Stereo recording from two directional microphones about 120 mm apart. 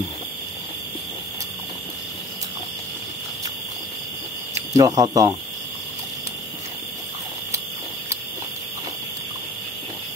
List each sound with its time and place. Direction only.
4.7 s speech: 30° right (ahead or behind)